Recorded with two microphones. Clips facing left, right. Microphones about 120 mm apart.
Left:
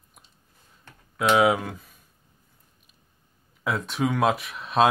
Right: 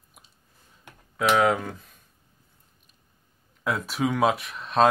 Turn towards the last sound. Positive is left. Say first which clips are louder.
# even
turn(degrees=0)  # may be behind; listen again after turning